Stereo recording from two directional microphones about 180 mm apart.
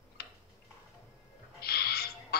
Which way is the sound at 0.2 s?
60° left (ahead or behind).